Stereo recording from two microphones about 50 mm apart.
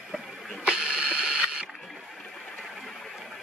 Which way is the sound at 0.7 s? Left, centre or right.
Right.